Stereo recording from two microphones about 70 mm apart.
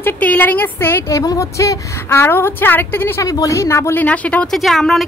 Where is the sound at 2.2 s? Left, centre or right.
Left.